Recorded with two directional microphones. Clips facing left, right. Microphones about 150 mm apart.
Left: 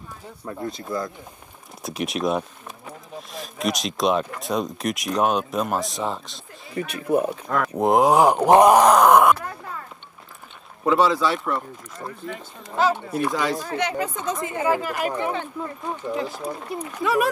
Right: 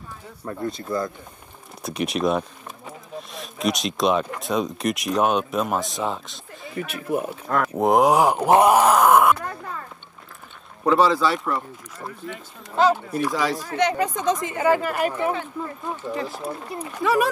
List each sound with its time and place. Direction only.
0.5 s speech: centre (ahead or behind)
6.7 s speech: 30° left (ahead or behind)
7.4 s speech: centre (ahead or behind)
8.5 s speech: 35° left (ahead or behind)
10.9 s a woman's voice: centre (ahead or behind)
14.8 s speech: 55° right (ahead or behind)
15.1 s speech: centre (ahead or behind)